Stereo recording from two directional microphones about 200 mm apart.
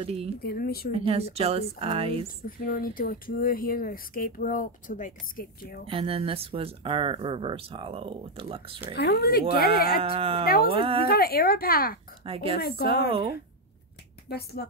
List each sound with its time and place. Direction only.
0.0 s speech: 30° right (ahead or behind)
0.4 s speech: 50° left (ahead or behind)
0.9 s speech: 30° right (ahead or behind)
2.2 s speech: 45° left (ahead or behind)
5.9 s speech: 25° right (ahead or behind)
8.9 s speech: 55° left (ahead or behind)
10.0 s speech: 30° right (ahead or behind)
10.4 s speech: 50° left (ahead or behind)
10.7 s speech: 25° right (ahead or behind)
11.1 s speech: 50° left (ahead or behind)
14.3 s speech: 50° left (ahead or behind)